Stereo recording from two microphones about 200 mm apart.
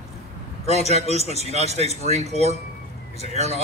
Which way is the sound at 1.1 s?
35° right (ahead or behind).